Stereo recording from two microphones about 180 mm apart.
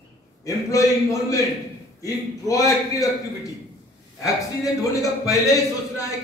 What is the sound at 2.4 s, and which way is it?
Speech, 20° left (ahead or behind).